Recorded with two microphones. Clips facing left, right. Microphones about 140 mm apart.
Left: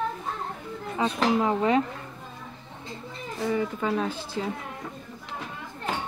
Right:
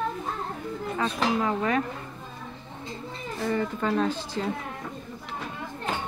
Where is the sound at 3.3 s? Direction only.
10° left (ahead or behind).